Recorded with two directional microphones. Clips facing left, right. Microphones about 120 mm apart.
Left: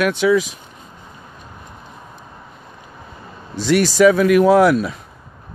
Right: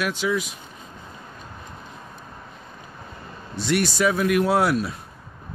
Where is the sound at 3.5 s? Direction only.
90° left.